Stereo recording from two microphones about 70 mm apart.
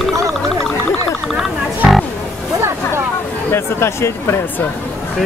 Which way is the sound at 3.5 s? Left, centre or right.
Left.